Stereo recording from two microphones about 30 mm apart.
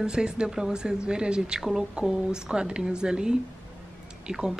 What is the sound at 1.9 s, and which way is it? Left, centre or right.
Speech, right.